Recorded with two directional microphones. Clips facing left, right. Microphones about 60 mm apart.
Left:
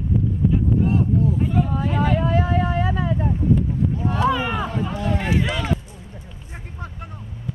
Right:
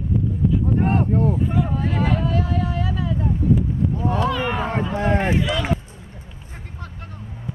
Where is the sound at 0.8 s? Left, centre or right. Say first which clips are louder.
Right 1 dB; right.